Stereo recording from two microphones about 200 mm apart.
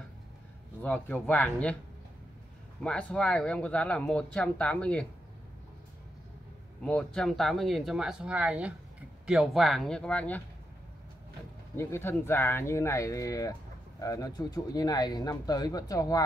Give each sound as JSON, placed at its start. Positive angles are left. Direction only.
{"t": 0.8, "sound": "speech", "side_deg": 5}
{"t": 2.8, "sound": "speech", "side_deg": 5}
{"t": 6.8, "sound": "speech", "side_deg": 5}
{"t": 11.7, "sound": "speech", "side_deg": 15}